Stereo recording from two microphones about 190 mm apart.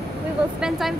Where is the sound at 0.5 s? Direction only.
Centre (ahead or behind).